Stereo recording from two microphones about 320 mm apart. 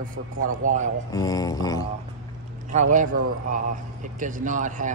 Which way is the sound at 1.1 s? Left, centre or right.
Centre.